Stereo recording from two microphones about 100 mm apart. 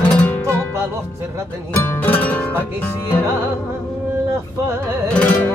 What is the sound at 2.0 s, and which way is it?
Music, 15° left (ahead or behind).